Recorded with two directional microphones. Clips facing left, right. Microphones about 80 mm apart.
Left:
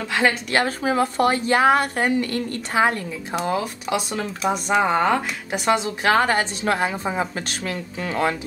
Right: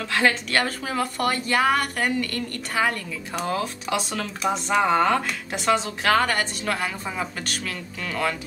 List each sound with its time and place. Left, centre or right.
0.1 s speech: centre